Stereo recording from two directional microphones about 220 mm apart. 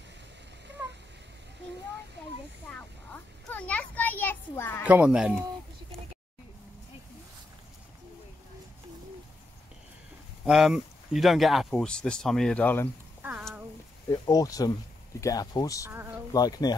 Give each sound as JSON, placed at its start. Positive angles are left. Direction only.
{"t": 3.4, "sound": "a sound", "side_deg": 5}
{"t": 4.8, "sound": "speech", "side_deg": -5}
{"t": 10.4, "sound": "speech", "side_deg": 0}
{"t": 13.2, "sound": "a sound", "side_deg": -10}
{"t": 14.1, "sound": "speech", "side_deg": 15}
{"t": 15.9, "sound": "speech", "side_deg": -10}
{"t": 16.3, "sound": "speech", "side_deg": 15}